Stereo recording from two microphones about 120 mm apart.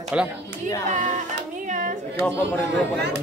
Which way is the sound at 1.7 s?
90° right.